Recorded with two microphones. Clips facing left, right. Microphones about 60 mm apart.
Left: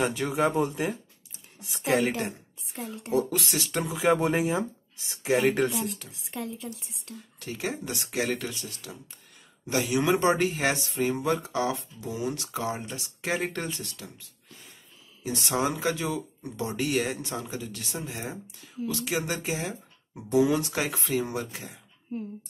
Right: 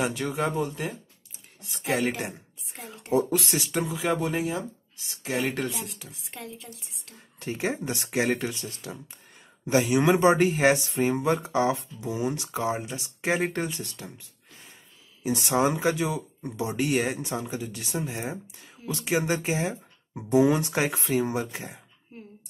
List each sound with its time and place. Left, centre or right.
0.0 s speech: centre
2.8 s speech: right
3.9 s speech: centre
5.2 s speech: centre
7.2 s speech: right